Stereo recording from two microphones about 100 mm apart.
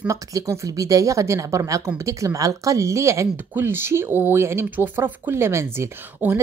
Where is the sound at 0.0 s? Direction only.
35° right (ahead or behind).